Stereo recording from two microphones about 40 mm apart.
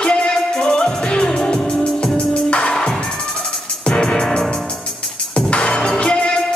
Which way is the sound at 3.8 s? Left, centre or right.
Left.